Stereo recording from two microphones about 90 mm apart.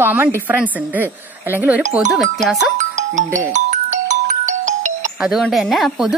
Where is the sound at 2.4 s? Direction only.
Centre (ahead or behind).